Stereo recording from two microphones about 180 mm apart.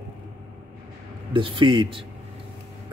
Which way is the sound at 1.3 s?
25° right (ahead or behind).